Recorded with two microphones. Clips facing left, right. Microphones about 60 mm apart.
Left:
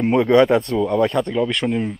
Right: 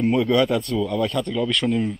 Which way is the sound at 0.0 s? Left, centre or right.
Left.